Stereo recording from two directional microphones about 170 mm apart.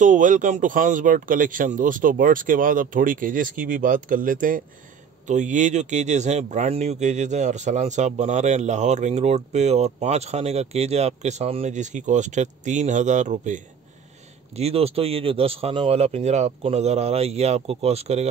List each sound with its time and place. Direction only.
0.0 s speech: 50° right (ahead or behind)